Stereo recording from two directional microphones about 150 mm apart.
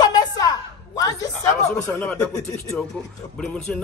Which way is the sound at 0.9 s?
25° left (ahead or behind).